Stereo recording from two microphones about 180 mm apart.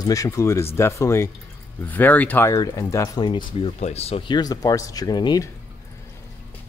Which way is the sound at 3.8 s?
35° left (ahead or behind).